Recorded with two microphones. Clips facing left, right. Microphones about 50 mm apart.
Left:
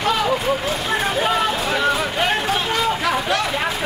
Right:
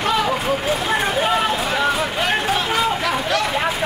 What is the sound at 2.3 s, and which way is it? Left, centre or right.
Speech, centre.